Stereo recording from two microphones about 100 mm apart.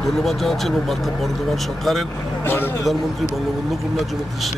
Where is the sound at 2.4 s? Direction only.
20° left (ahead or behind).